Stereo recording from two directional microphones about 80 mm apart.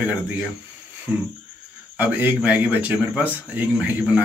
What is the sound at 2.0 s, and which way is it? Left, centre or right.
Speech, right.